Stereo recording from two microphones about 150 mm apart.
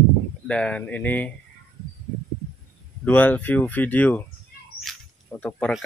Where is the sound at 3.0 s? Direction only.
10° left (ahead or behind).